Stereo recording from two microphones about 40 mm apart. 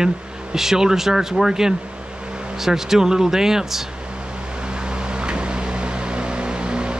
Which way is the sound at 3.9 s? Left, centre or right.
Right.